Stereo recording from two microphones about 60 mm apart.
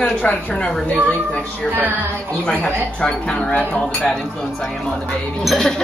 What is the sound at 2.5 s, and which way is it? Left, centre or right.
Speech, left.